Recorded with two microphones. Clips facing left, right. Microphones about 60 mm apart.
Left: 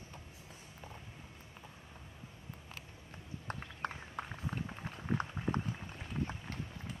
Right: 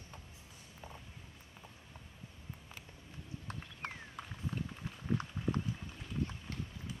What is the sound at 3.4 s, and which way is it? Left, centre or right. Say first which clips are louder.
Run: left 5 dB; left.